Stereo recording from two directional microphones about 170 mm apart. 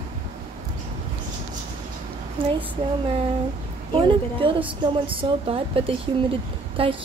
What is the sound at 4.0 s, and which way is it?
A woman's voice, 30° right (ahead or behind).